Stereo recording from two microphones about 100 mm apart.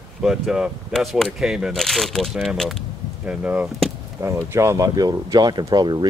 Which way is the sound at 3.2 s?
15° right (ahead or behind).